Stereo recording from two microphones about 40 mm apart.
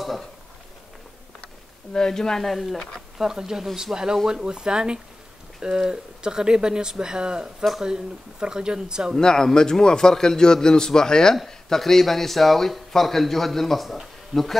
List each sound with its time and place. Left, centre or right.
2.0 s a man's voice: centre
2.5 s speech: centre
3.2 s speech: centre
9.1 s a man's voice: centre